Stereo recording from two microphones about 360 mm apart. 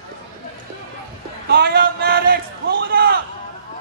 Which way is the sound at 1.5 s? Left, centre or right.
Right.